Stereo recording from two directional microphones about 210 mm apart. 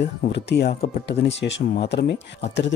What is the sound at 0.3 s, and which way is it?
Speech, 55° left (ahead or behind).